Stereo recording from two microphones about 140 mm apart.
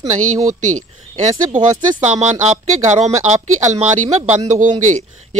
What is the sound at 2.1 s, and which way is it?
Speech, 55° right (ahead or behind).